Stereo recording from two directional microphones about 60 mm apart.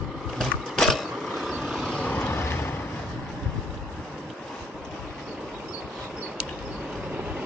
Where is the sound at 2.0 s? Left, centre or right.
Centre.